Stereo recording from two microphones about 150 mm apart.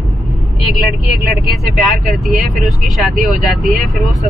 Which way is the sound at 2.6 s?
Centre (ahead or behind).